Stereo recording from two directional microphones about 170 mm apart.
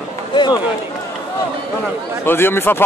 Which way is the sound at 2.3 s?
15° left (ahead or behind).